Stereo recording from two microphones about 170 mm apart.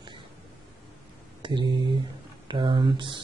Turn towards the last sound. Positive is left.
turn(degrees=-30)  # may be behind; listen again after turning